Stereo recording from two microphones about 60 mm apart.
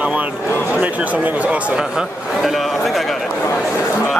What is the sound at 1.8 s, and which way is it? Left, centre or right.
A man's voice, centre.